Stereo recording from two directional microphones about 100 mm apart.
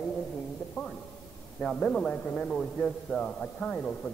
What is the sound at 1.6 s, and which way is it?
A man's voice, 10° left (ahead or behind).